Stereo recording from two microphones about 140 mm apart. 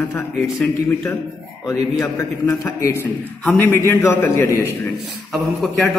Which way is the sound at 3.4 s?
10° left (ahead or behind).